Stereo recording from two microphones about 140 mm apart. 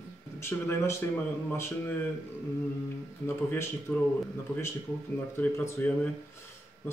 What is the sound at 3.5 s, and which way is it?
Speech, 20° left (ahead or behind).